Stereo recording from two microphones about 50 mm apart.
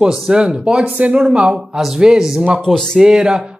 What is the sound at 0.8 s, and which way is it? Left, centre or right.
Speech, right.